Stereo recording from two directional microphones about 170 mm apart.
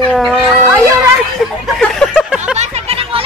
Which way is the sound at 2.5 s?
35° right (ahead or behind).